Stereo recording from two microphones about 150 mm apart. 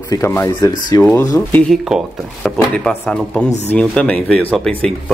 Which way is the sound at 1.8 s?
5° right (ahead or behind).